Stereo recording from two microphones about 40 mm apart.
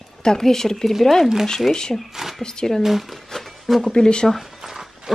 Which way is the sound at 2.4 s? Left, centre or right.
Centre.